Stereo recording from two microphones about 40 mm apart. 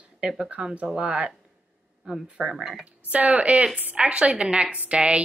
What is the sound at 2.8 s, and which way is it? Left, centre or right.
A woman's voice, right.